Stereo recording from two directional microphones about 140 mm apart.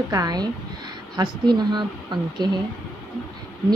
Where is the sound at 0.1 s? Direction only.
25° right (ahead or behind).